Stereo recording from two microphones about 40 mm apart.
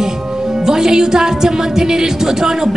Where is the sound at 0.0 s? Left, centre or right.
Centre.